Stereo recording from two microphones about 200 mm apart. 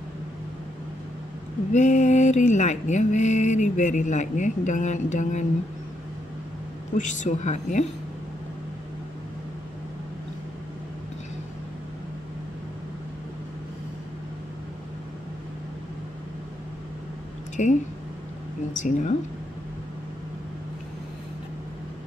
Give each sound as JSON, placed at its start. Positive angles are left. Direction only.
{"t": 1.7, "sound": "mantra", "side_deg": 35}
{"t": 7.0, "sound": "mantra", "side_deg": 40}
{"t": 17.6, "sound": "speech", "side_deg": 40}
{"t": 18.7, "sound": "mantra", "side_deg": 40}